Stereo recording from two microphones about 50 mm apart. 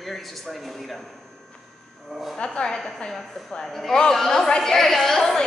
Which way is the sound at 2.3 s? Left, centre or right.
Centre.